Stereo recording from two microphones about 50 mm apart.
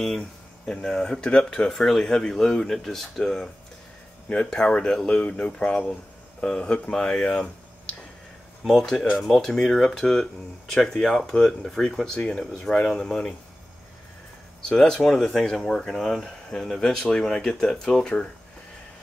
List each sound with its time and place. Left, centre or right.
0.0 s speech: centre
4.3 s speech: left
8.6 s speech: centre
14.7 s speech: centre